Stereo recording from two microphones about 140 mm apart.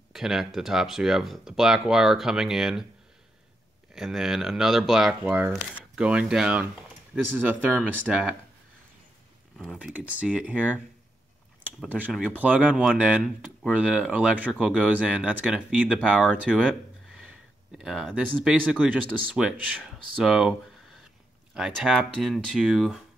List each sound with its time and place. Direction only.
0.1 s speech: 5° right (ahead or behind)
3.9 s speech: centre (ahead or behind)
9.8 s speech: 10° right (ahead or behind)
12.3 s speech: 10° right (ahead or behind)
17.7 s speech: 5° right (ahead or behind)